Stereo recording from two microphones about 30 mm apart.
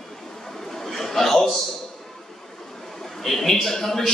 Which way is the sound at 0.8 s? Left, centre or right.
Centre.